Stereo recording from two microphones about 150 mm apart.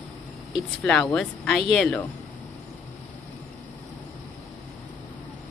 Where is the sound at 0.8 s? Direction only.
5° left (ahead or behind).